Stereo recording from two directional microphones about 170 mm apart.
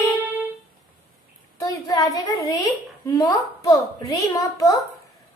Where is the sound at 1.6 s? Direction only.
20° left (ahead or behind).